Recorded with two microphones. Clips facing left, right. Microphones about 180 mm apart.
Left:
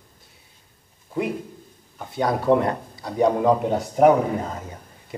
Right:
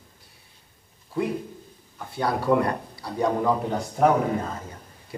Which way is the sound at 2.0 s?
20° left (ahead or behind).